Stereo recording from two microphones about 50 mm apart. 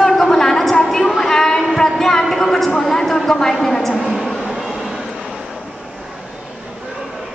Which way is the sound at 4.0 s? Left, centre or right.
Centre.